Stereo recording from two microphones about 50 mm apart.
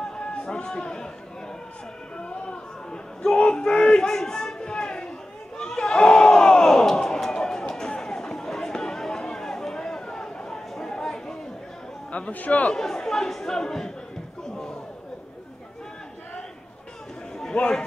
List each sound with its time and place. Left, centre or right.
0.0 s a sound: centre
2.1 s a sound: left
5.6 s crowd: centre
12.1 s a man's voice: left
12.7 s speech: centre
14.5 s chatter: centre
17.5 s a man's voice: centre